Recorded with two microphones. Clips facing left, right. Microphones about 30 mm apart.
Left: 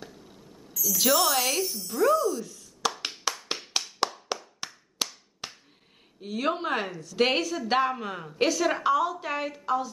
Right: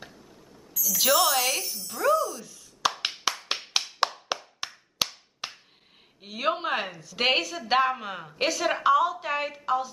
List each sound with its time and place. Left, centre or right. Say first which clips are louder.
0.7 s speech: right 1 dB; centre
2.9 s tap: right 2 dB; right
5.0 s clapping: right 3 dB; right
6.2 s a woman's voice: even; centre